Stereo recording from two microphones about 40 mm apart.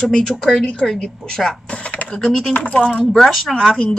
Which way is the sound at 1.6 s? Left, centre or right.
Left.